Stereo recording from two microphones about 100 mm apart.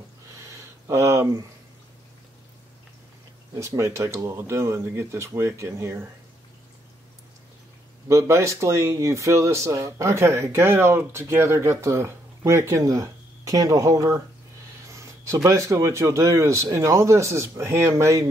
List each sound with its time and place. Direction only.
0.4 s a sound: 30° right (ahead or behind)
3.5 s speech: 30° right (ahead or behind)
8.1 s speech: 30° right (ahead or behind)